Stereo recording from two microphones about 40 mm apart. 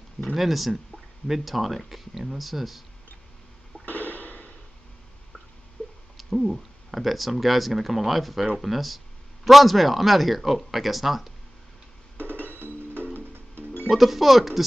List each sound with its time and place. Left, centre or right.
0.3 s speech: centre
3.8 s a sound: left
5.8 s a sound: left
6.1 s speech: centre
12.4 s music: left
12.9 s music: right
13.8 s speech: centre